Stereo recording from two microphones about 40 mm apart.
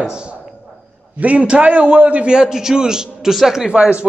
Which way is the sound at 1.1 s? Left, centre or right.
Right.